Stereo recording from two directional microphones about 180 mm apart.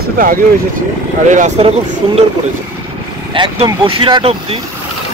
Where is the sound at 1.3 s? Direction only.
45° right (ahead or behind).